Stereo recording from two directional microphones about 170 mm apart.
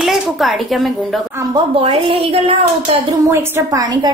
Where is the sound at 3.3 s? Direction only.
20° right (ahead or behind).